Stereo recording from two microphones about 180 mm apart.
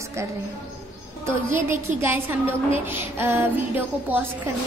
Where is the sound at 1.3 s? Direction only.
15° right (ahead or behind).